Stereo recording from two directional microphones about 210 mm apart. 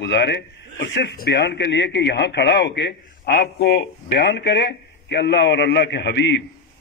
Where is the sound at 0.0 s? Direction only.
55° left (ahead or behind).